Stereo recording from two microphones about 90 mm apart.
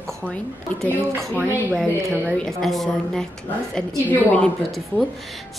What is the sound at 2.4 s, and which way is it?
A woman's voice, 5° left (ahead or behind).